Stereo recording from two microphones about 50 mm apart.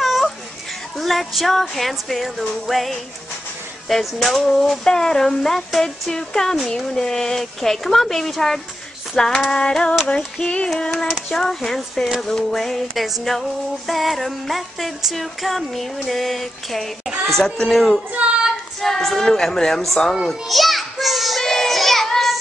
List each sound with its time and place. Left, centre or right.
0.0 s children playing: centre
0.9 s music: centre
4.8 s speech: centre
10.0 s female singing: left
11.2 s music: centre
17.4 s speech: centre
20.2 s children playing: centre
21.4 s child singing: centre